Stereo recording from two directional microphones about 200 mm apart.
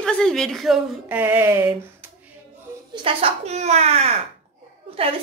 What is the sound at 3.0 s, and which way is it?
Speech, 30° right (ahead or behind).